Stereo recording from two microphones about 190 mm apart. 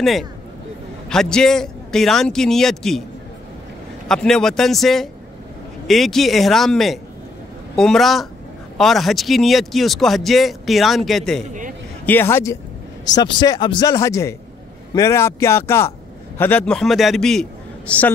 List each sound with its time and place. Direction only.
0.0 s speech: centre (ahead or behind)
4.1 s a man's voice: 5° left (ahead or behind)